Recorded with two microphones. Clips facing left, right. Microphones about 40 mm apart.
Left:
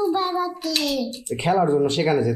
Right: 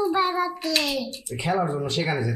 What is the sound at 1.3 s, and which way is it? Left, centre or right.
Speech, left.